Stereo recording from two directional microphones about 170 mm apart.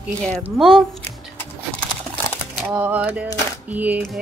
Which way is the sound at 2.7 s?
10° right (ahead or behind).